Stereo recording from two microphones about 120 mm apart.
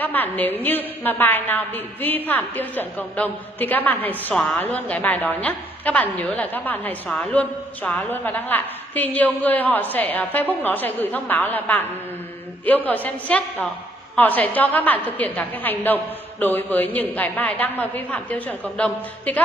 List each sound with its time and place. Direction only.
0.0 s a woman's voice: 15° left (ahead or behind)